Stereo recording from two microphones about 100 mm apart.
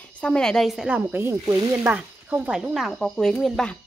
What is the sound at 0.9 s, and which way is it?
Speech, 20° right (ahead or behind).